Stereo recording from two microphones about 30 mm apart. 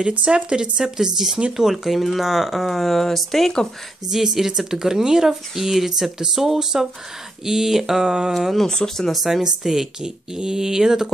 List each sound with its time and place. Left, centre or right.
0.1 s speech: right; by 1.4 s centre
1.6 s speech: centre
4.1 s speech: centre
8.3 s speech: centre
8.6 s speech: centre
9.1 s speech: centre